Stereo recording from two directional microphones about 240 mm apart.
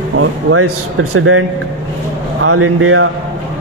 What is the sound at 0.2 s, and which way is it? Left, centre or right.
A man's voice, right.